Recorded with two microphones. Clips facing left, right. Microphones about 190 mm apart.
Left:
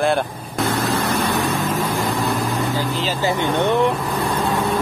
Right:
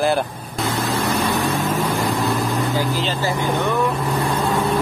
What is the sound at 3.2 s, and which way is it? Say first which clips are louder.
Speech: left 4 dB; 20° left (ahead or behind).